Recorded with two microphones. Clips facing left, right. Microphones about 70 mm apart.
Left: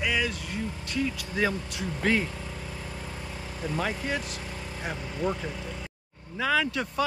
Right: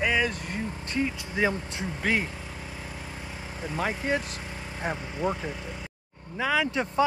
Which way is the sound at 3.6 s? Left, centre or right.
Centre.